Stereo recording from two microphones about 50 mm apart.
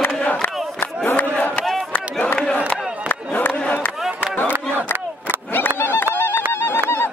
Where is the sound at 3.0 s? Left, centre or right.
Left.